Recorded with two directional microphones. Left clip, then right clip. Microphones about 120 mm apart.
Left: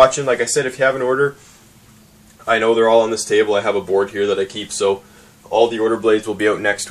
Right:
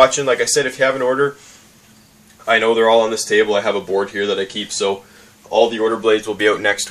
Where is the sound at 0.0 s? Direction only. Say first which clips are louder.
Even; 25° right (ahead or behind).